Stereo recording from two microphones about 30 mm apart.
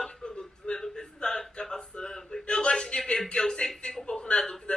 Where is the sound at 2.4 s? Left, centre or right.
Left.